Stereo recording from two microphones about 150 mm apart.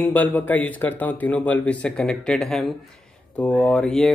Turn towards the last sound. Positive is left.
turn(degrees=5)  # may be behind; listen again after turning